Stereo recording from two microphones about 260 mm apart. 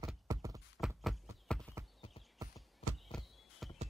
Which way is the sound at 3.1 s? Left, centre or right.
Centre.